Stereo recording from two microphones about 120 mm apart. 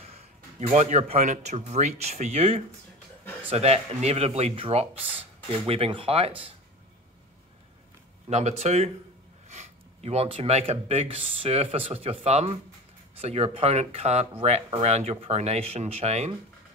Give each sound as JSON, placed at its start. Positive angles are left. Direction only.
{"t": 0.0, "sound": "speech", "side_deg": -65}
{"t": 8.3, "sound": "speech", "side_deg": -70}
{"t": 9.5, "sound": "a sound", "side_deg": -65}
{"t": 10.7, "sound": "speech", "side_deg": -60}